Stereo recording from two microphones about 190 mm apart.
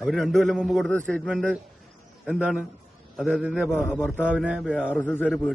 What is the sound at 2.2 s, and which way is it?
A man's voice, 5° right (ahead or behind).